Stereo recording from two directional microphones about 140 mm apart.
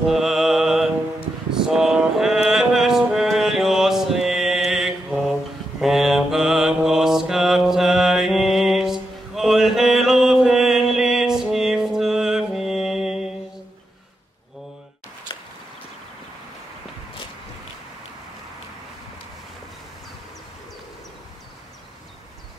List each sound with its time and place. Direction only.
0.1 s mantra: centre (ahead or behind)
1.5 s music: 5° right (ahead or behind)
4.6 s mantra: centre (ahead or behind)
15.3 s a sound: 35° left (ahead or behind)